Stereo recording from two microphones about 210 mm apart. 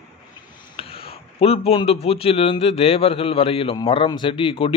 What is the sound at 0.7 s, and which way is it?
A man's voice, 25° left (ahead or behind).